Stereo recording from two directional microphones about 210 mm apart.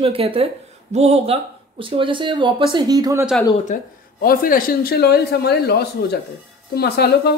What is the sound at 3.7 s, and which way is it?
Speech, 45° left (ahead or behind).